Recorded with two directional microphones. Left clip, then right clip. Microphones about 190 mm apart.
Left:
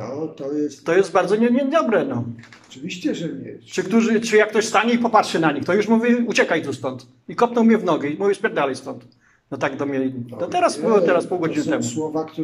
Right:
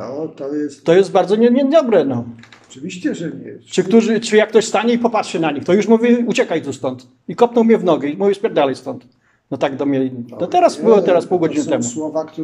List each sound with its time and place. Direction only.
0.0 s speech: 5° right (ahead or behind)
0.8 s a man's voice: 20° right (ahead or behind)
2.9 s speech: centre (ahead or behind)
3.7 s a man's voice: 20° right (ahead or behind)
11.8 s speech: centre (ahead or behind)